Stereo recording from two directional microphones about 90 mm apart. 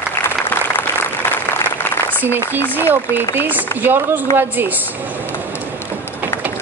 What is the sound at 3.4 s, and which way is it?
Speech, 20° right (ahead or behind).